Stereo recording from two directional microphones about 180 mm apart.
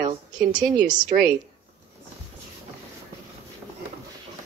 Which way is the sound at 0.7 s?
25° right (ahead or behind).